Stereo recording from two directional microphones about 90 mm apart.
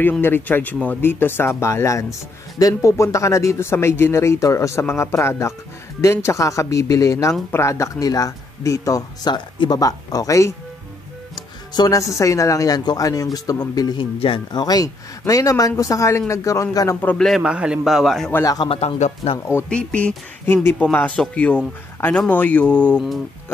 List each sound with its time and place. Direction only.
0.2 s speech: 20° left (ahead or behind); by 10.5 s 35° left (ahead or behind)
11.3 s music: 50° left (ahead or behind)
12.1 s speech: 35° left (ahead or behind)
16.9 s speech: 20° left (ahead or behind)
17.4 s a man's voice: 10° right (ahead or behind)
17.8 s a man's voice: centre (ahead or behind)
18.4 s speech: 45° left (ahead or behind)
18.7 s speech: 80° left
19.7 s speech: 15° left (ahead or behind)
20.4 s speech: 25° left (ahead or behind)